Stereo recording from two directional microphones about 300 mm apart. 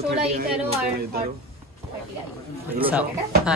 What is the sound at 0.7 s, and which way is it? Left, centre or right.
Speech, right.